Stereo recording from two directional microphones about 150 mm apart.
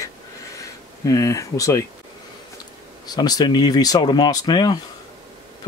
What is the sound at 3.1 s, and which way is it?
Speech, 25° left (ahead or behind).